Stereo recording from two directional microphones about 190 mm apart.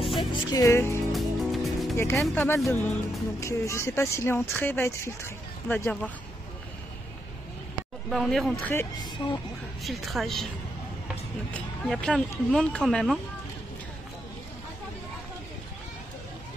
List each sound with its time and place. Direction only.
0.2 s music: 20° left (ahead or behind)
1.1 s music: centre (ahead or behind)
2.1 s speech: 10° left (ahead or behind)
8.1 s speech: centre (ahead or behind)
9.2 s music: 25° left (ahead or behind)
9.8 s speech: centre (ahead or behind)
11.5 s speech: 5° left (ahead or behind)